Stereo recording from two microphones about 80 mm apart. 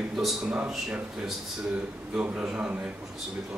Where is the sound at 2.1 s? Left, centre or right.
Centre.